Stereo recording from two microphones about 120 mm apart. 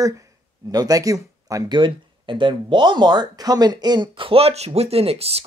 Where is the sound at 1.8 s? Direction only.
40° right (ahead or behind).